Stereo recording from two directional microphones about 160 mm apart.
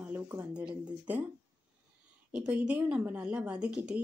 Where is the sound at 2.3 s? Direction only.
5° right (ahead or behind).